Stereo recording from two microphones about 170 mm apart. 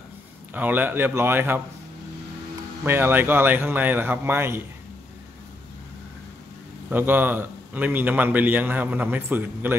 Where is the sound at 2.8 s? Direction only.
15° right (ahead or behind).